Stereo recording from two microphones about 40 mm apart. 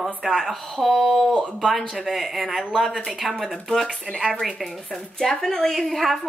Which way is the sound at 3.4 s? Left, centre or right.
Centre.